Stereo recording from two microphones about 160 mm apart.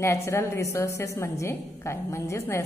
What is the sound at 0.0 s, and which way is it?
A woman's voice, 15° left (ahead or behind).